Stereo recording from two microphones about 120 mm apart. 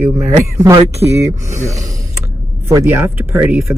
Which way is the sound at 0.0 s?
25° right (ahead or behind).